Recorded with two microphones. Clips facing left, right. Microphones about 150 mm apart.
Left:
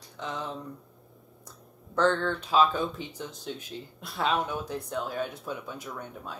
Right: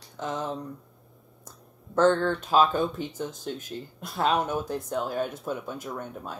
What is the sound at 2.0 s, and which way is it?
Speech, centre (ahead or behind).